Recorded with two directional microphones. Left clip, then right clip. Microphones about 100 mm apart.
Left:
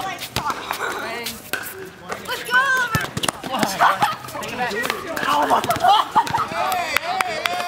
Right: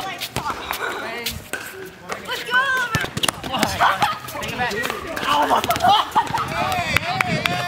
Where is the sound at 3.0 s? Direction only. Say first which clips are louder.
Right 1 dB; 5° left (ahead or behind).